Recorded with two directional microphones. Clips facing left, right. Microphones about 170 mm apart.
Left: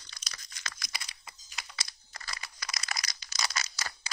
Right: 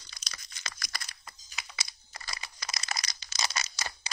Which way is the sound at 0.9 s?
Centre (ahead or behind).